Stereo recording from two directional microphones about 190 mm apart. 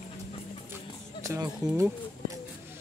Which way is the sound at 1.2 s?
15° right (ahead or behind).